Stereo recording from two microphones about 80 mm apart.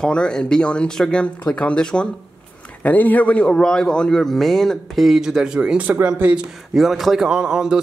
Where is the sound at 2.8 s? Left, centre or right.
Left; by 6.4 s centre.